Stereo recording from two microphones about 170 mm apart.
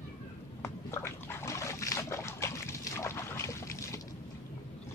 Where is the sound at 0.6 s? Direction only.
15° left (ahead or behind).